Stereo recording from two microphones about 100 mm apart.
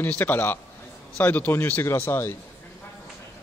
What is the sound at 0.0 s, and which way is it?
A man's voice, 20° left (ahead or behind).